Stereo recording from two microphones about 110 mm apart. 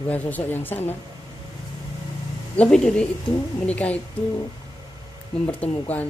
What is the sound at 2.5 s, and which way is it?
Speech, 10° left (ahead or behind).